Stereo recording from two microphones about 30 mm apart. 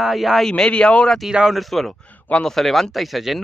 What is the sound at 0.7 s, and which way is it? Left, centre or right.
Speech, left.